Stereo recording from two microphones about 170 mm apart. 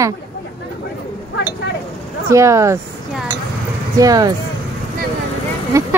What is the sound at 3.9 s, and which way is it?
Speech, 20° right (ahead or behind).